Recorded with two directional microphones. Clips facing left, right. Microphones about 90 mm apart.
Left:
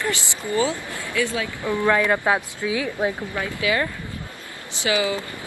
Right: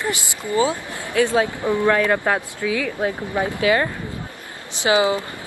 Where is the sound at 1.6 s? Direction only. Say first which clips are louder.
Right 4 dB; 20° right (ahead or behind).